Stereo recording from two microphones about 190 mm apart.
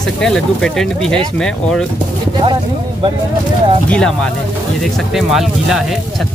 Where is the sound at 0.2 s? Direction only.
5° left (ahead or behind).